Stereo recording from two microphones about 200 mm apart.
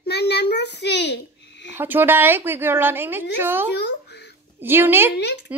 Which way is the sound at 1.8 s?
10° right (ahead or behind).